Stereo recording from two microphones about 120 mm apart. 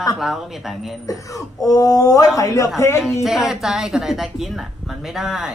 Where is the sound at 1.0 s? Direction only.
30° left (ahead or behind).